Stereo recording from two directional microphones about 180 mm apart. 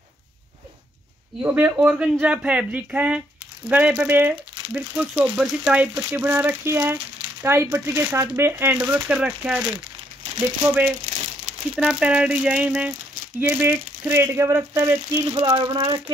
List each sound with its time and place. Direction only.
1.4 s speech: 10° right (ahead or behind)
15.5 s speech: 30° right (ahead or behind)